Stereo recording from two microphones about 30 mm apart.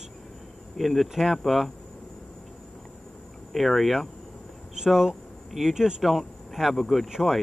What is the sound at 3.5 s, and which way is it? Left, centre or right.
Speech, centre.